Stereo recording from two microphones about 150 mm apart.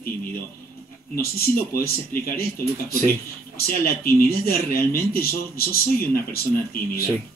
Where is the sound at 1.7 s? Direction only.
90° left.